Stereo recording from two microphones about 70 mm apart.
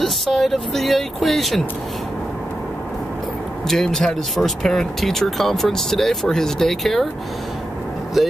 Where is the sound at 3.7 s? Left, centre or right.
Centre.